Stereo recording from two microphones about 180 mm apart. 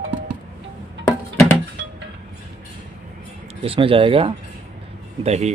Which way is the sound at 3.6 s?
30° right (ahead or behind).